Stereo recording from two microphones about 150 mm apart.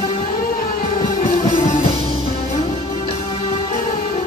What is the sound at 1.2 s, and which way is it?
Music, 40° left (ahead or behind).